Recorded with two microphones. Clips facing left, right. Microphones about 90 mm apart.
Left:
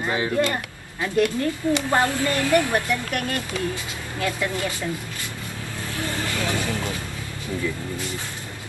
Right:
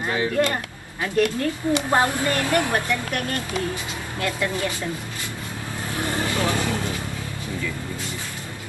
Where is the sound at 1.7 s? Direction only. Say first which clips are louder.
Right 2 dB; 20° right (ahead or behind).